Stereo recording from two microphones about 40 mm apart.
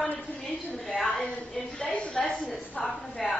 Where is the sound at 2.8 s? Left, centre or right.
Left.